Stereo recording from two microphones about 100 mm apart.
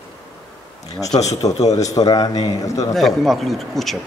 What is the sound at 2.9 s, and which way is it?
A man's voice, centre (ahead or behind).